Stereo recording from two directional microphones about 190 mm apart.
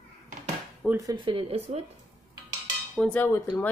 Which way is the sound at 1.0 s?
20° right (ahead or behind).